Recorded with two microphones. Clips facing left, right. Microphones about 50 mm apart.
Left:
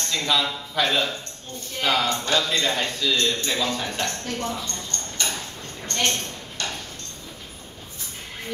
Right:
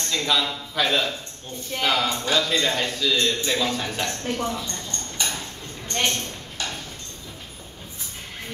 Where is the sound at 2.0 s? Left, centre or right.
Centre.